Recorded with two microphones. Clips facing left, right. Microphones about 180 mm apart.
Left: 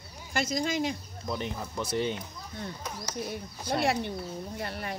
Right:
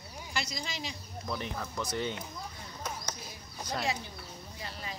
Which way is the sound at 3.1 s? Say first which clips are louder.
Left 9 dB; 65° left (ahead or behind).